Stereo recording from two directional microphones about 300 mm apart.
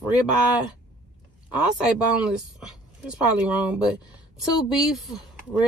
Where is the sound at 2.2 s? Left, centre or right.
Centre.